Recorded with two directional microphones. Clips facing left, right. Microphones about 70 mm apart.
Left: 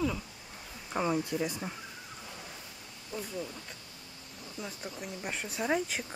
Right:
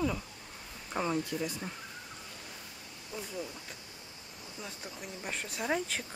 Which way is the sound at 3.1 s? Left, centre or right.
Centre.